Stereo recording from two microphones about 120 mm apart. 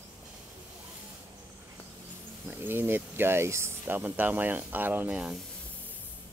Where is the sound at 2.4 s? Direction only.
20° right (ahead or behind).